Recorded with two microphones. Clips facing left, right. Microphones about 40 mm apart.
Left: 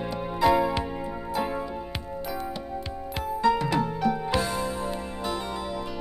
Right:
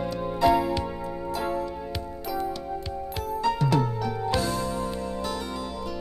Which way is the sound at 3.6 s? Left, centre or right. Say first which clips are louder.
Even; centre.